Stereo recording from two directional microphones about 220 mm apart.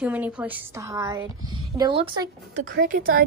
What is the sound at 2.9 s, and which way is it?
Speech, 40° right (ahead or behind).